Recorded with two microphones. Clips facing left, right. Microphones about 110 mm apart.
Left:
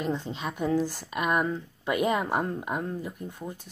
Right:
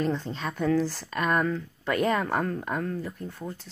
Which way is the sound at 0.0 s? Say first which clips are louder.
Right 2 dB; 15° left (ahead or behind).